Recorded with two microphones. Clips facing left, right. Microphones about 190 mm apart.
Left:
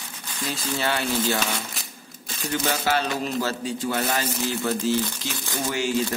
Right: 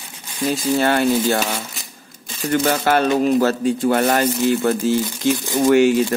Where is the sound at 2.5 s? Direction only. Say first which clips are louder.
Right 7 dB; 55° right (ahead or behind).